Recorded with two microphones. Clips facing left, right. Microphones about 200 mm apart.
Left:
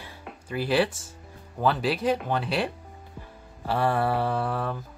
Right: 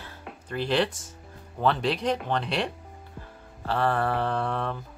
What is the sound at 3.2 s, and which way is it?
Music, 10° left (ahead or behind).